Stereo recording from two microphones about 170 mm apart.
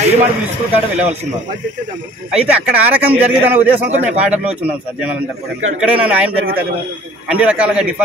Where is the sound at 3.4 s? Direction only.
10° right (ahead or behind).